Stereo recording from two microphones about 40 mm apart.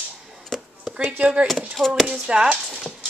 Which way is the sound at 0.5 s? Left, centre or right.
Centre.